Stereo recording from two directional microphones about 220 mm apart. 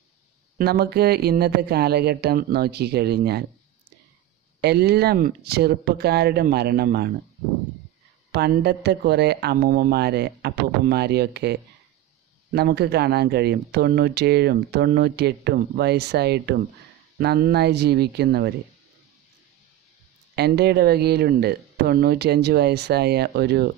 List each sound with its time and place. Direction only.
0.6 s speech: 45° right (ahead or behind)
4.6 s speech: 50° right (ahead or behind)
8.3 s speech: 50° right (ahead or behind)
12.5 s speech: 45° right (ahead or behind)
20.3 s speech: 50° right (ahead or behind)